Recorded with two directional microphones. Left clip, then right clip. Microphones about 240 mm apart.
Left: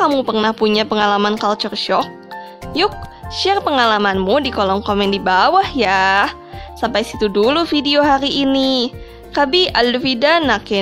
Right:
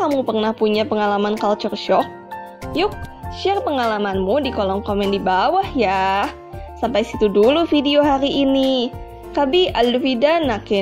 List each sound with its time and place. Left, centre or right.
0.2 s a woman's voice: centre